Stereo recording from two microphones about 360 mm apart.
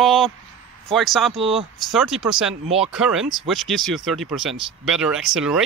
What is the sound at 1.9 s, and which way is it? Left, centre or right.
Speech, centre.